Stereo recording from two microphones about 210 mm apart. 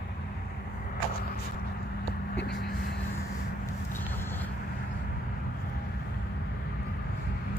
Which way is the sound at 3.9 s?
10° left (ahead or behind).